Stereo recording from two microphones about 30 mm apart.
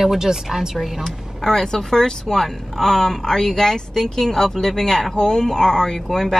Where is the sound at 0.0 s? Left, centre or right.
Centre.